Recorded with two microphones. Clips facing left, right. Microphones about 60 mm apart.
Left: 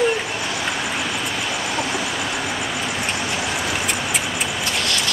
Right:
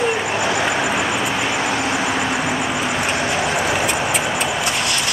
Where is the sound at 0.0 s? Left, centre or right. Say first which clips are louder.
Right 2 dB; right.